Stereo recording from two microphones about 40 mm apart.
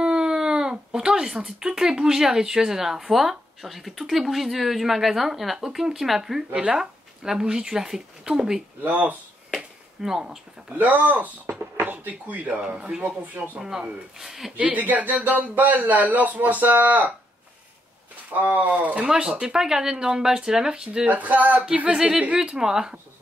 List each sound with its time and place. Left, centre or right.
0.0 s speech: centre
8.8 s speech: right
10.0 s speech: centre
10.7 s speech: right
12.6 s speech: right
13.0 s speech: right
13.6 s speech: centre
14.6 s speech: right
18.4 s speech: right
19.0 s speech: centre
21.0 s speech: right
21.9 s speech: centre